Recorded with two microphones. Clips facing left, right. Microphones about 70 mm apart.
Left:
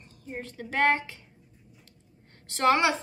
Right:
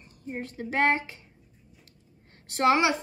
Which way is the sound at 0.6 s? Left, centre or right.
Right.